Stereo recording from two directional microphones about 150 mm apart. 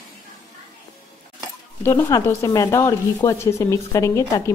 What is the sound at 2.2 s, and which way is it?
Speech, 20° left (ahead or behind).